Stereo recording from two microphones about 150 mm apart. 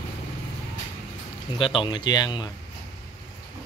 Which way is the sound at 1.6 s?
35° left (ahead or behind).